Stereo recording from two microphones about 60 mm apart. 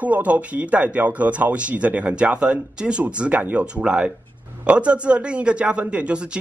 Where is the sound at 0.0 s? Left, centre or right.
Right.